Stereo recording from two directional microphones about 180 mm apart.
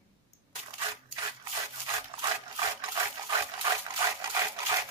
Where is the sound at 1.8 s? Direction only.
20° right (ahead or behind).